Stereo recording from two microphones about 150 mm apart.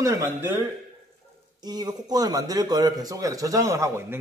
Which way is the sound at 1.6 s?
25° right (ahead or behind).